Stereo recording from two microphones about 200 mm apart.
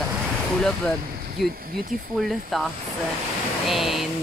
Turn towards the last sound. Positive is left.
turn(degrees=0)  # may be behind; listen again after turning